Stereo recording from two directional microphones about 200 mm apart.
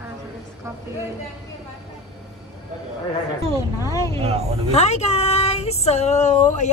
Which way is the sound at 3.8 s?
15° left (ahead or behind).